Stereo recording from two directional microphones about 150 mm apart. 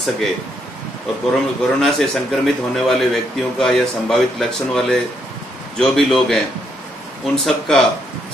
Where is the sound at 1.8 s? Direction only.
Centre (ahead or behind).